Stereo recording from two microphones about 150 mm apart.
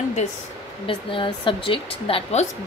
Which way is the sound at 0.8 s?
35° left (ahead or behind).